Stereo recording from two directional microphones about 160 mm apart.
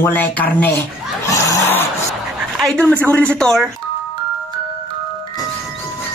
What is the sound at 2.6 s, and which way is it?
Speech, 5° left (ahead or behind).